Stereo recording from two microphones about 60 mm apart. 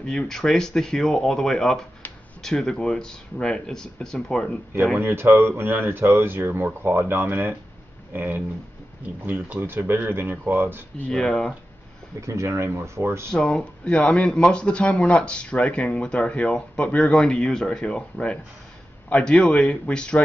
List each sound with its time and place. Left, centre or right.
0.3 s speech: centre
4.9 s speech: right
11.1 s speech: centre
12.2 s speech: right
13.3 s speech: centre